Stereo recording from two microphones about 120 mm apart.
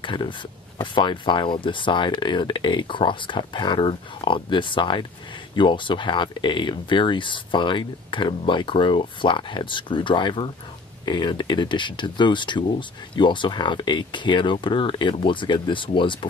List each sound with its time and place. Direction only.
0.0 s speech: 45° left (ahead or behind)